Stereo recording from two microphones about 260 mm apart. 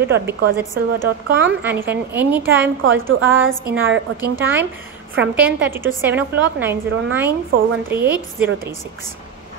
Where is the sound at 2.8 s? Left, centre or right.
Right.